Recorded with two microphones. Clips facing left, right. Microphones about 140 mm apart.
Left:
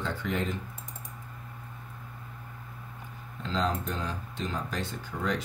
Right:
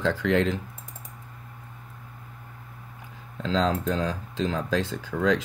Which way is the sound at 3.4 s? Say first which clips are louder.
Right 6 dB; 90° right.